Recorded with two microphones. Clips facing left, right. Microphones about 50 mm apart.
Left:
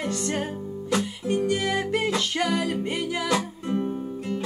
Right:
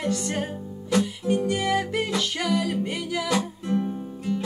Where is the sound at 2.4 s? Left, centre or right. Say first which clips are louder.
Even; left.